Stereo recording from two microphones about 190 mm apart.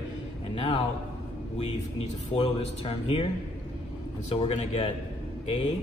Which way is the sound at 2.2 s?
30° left (ahead or behind).